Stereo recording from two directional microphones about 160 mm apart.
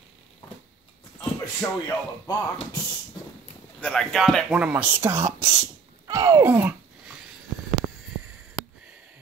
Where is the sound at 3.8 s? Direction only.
5° left (ahead or behind); by 6.7 s 10° right (ahead or behind).